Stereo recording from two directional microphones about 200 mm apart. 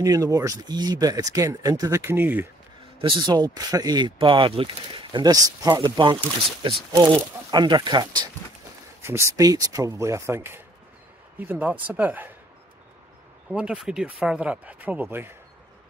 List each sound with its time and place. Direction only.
0.0 s speech: 15° right (ahead or behind)
3.0 s speech: 25° right (ahead or behind)
13.5 s speech: 5° right (ahead or behind)